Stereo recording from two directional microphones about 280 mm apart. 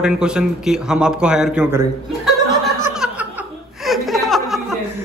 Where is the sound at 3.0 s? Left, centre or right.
Centre.